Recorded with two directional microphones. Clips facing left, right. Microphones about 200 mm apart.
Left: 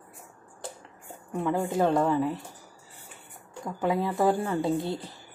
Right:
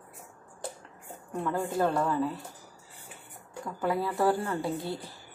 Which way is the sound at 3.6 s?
20° left (ahead or behind).